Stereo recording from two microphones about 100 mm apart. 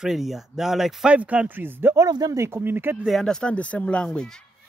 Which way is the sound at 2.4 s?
25° right (ahead or behind).